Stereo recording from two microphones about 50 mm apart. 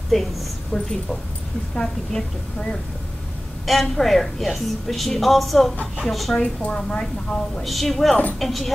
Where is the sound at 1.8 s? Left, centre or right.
Centre.